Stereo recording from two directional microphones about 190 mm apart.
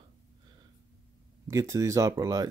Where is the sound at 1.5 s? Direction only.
15° right (ahead or behind).